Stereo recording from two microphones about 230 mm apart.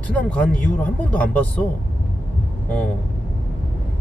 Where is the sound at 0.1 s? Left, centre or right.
Centre.